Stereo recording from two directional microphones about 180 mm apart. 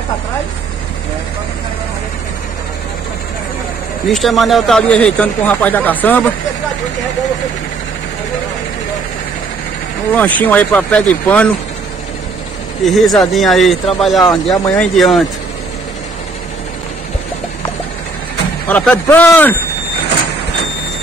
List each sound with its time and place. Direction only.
4.1 s speech: centre (ahead or behind)
10.1 s speech: 10° left (ahead or behind)
12.8 s speech: centre (ahead or behind)
14.2 s speech: 20° left (ahead or behind)
14.8 s speech: centre (ahead or behind)
18.7 s speech: 10° left (ahead or behind)